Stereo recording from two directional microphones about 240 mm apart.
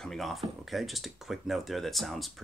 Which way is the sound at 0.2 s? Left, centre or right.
Centre.